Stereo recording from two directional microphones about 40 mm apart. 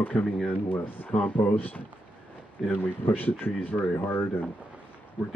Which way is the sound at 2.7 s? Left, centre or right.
Left.